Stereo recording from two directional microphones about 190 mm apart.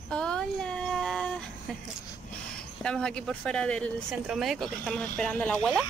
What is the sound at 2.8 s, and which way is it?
Speech, 5° left (ahead or behind).